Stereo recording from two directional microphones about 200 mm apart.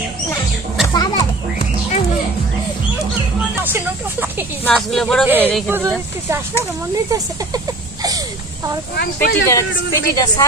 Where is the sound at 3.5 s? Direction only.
10° right (ahead or behind).